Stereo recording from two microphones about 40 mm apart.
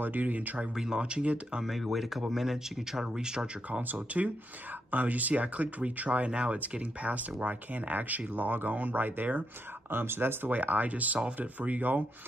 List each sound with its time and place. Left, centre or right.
0.0 s speech: right
0.7 s speech: centre
1.6 s speech: centre
3.9 s speech: right
9.8 s speech: right
10.5 s speech: right